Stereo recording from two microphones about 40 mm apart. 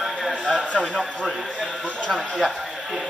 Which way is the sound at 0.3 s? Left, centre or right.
Left.